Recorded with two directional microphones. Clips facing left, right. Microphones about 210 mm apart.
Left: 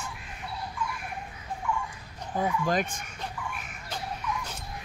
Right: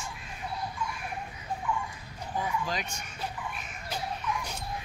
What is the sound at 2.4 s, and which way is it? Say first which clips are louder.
Speech: left 6 dB; 50° left (ahead or behind).